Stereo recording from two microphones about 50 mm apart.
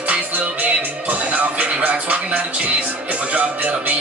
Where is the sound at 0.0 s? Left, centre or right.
Right.